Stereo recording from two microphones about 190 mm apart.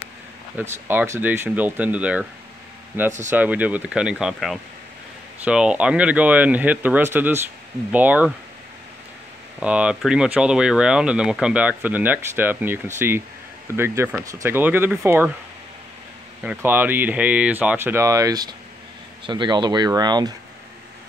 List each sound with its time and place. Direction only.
0.6 s speech: 10° right (ahead or behind)
9.6 s speech: 5° right (ahead or behind)
16.4 s speech: 10° right (ahead or behind)